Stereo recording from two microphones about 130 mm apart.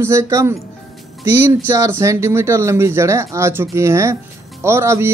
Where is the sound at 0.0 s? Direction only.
20° right (ahead or behind).